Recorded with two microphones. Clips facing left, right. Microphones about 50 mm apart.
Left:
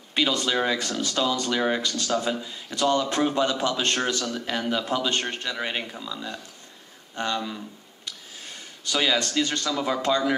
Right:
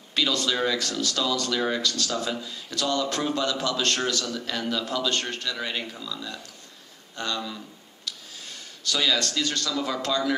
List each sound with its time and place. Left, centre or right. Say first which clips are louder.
0.1 s speech: left 2 dB; left
8.1 s a sound: right 2 dB; left
8.8 s speech: left 1 dB; left